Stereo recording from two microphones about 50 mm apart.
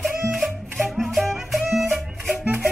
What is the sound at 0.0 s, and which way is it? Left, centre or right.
Music, centre.